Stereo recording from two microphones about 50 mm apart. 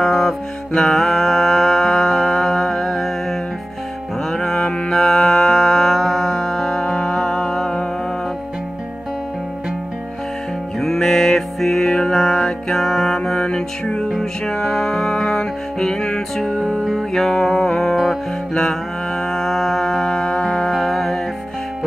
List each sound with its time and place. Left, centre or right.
0.0 s music: centre
4.4 s mantra: centre
4.9 s music: centre
10.8 s music: centre
20.7 s music: centre